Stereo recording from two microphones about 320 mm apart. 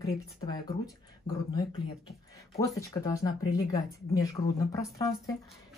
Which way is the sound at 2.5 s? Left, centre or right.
Centre.